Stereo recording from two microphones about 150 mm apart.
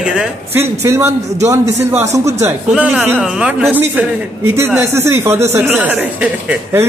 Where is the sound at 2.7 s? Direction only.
5° right (ahead or behind).